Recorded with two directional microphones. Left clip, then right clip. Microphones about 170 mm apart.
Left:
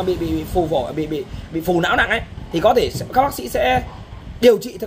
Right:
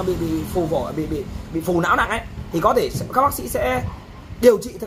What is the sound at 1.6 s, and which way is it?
Speech, 25° left (ahead or behind).